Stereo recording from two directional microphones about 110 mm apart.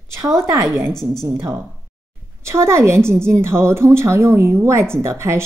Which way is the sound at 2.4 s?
25° right (ahead or behind).